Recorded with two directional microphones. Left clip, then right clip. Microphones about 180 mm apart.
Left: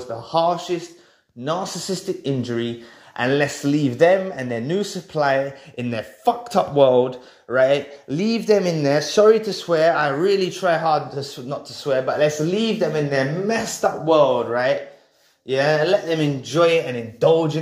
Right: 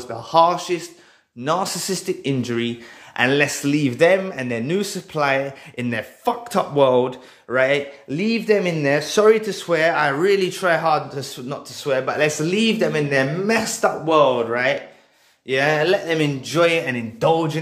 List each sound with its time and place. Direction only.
0.0 s a man's voice: 15° right (ahead or behind)